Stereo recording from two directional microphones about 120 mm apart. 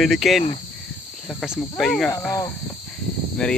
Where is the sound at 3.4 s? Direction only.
5° left (ahead or behind).